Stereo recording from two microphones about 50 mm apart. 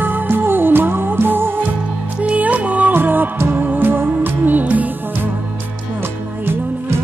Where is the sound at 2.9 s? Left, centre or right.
Right.